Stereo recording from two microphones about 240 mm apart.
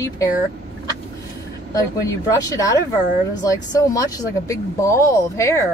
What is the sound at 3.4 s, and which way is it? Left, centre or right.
Speech, centre.